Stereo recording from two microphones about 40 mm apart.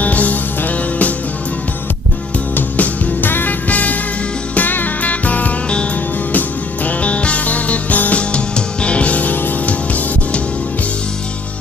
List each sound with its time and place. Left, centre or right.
0.0 s music: left
2.5 s music: left
3.6 s music: left